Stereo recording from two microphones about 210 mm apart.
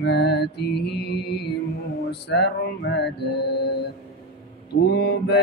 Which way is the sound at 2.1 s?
55° left (ahead or behind).